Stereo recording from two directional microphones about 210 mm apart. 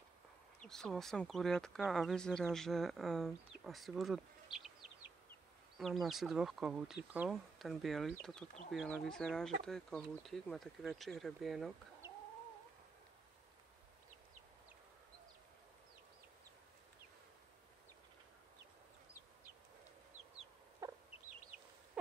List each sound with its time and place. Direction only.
0.6 s speech: 5° left (ahead or behind)
5.8 s speech: centre (ahead or behind)
20.8 s chicken: 15° right (ahead or behind)
22.0 s a sound: 5° right (ahead or behind)